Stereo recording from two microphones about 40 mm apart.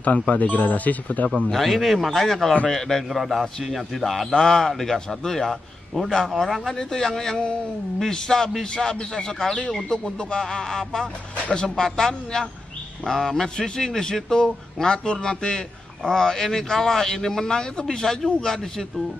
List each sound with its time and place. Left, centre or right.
0.3 s speech: left
1.5 s a man's voice: centre
3.1 s a man's voice: centre